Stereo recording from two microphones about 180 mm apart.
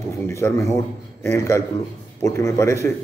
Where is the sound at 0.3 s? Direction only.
15° left (ahead or behind).